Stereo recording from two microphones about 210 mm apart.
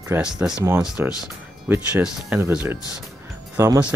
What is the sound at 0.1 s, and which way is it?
Speech, 5° right (ahead or behind).